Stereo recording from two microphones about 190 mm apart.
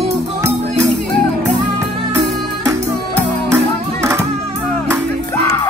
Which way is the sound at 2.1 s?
15° right (ahead or behind).